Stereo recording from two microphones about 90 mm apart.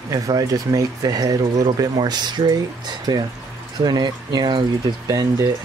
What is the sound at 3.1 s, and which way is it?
Speech, 65° right (ahead or behind).